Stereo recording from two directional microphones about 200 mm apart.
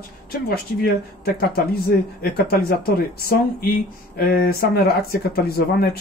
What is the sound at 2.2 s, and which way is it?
Speech, 50° left (ahead or behind).